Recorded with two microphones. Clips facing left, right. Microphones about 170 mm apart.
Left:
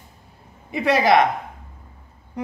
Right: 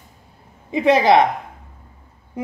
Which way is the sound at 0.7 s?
20° right (ahead or behind).